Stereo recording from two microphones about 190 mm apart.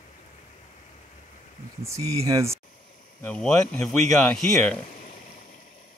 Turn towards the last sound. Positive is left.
turn(degrees=5)  # may be behind; listen again after turning